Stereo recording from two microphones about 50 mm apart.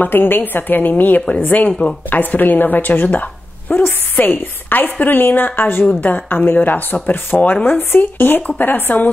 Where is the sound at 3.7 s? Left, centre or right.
Left.